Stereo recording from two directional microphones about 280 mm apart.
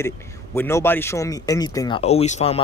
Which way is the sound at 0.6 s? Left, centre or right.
Centre.